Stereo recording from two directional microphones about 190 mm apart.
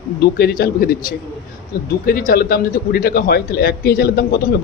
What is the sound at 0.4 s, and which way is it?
A man's voice, 55° left (ahead or behind).